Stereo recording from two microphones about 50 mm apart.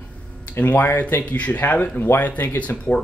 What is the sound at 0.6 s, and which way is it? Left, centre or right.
Speech, left.